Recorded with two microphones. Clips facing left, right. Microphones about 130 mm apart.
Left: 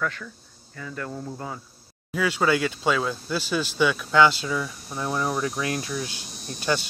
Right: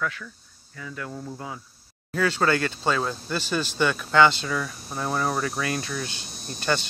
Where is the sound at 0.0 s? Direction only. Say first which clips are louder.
Left 1 dB; centre (ahead or behind).